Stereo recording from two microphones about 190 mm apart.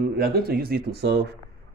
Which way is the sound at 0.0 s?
55° right (ahead or behind).